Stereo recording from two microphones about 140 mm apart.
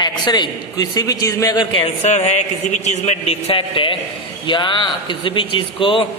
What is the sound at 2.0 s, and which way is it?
A man's voice, 55° left (ahead or behind).